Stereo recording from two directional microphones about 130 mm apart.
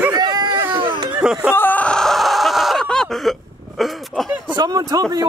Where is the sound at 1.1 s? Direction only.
5° right (ahead or behind).